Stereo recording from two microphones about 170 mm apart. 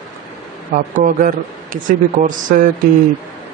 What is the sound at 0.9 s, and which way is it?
Speech, 50° right (ahead or behind).